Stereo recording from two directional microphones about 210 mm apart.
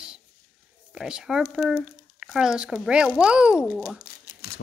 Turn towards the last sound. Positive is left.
turn(degrees=45)  # may be behind; listen again after turning